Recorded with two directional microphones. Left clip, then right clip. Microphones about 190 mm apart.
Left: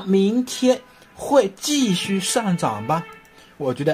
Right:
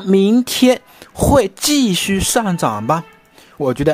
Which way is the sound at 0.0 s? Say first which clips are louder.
Right 6 dB; 40° right (ahead or behind).